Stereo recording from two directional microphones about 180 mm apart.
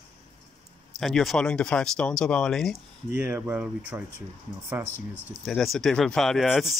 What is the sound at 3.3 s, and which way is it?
Speech, 10° right (ahead or behind).